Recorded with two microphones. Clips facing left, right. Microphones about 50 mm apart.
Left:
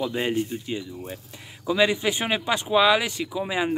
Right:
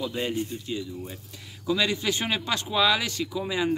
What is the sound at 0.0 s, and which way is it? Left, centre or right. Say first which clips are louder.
Speech: left 4 dB; left.